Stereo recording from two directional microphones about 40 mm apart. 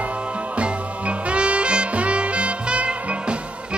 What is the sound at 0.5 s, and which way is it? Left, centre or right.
Music, right.